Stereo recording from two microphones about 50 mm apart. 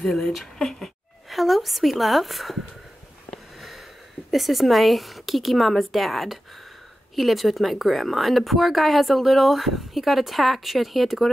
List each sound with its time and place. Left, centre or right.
0.0 s a woman's voice: centre
4.3 s speech: centre